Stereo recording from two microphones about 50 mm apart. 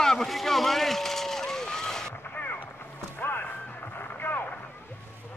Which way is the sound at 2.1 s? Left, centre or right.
Left.